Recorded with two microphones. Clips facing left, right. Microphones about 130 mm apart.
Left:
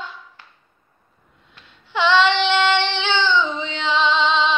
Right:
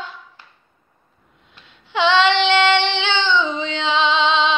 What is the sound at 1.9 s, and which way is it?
Child singing, 20° right (ahead or behind).